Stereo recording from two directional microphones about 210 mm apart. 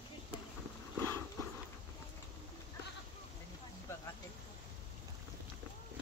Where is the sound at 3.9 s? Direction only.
10° left (ahead or behind).